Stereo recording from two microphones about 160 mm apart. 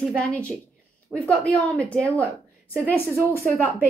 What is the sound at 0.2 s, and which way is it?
A woman's voice, 5° left (ahead or behind).